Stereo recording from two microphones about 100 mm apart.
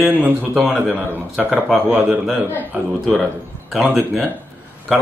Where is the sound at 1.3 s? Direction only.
5° right (ahead or behind).